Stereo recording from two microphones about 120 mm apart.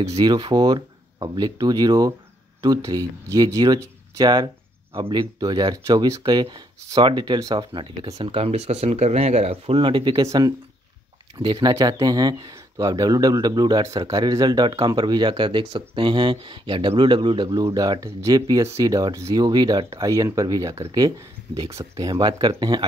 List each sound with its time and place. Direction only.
0.2 s speech: 35° right (ahead or behind)
4.9 s speech: 45° right (ahead or behind)
10.2 s speech: 30° right (ahead or behind)
11.3 s speech: 40° right (ahead or behind)